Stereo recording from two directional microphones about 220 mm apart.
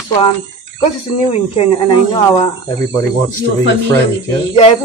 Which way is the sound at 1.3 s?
25° left (ahead or behind).